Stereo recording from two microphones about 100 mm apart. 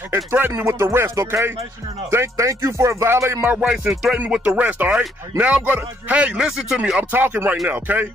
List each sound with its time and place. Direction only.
0.1 s speech: 25° right (ahead or behind)
3.6 s music: 5° right (ahead or behind)
4.2 s a man's voice: 10° right (ahead or behind)